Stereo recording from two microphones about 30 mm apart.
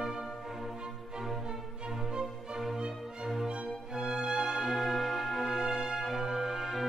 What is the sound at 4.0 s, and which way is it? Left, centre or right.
Music, right.